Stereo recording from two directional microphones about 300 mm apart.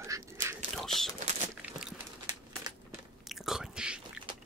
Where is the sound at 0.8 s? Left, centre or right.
Centre.